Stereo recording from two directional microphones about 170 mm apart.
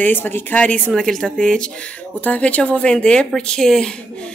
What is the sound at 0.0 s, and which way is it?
Speech, 10° left (ahead or behind).